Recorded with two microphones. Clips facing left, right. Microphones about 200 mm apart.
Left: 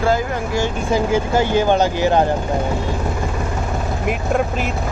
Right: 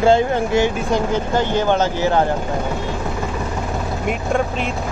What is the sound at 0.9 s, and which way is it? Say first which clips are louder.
Speech: left 2 dB; 10° left (ahead or behind).